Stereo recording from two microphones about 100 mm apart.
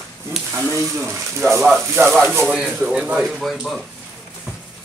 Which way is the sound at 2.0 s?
20° right (ahead or behind).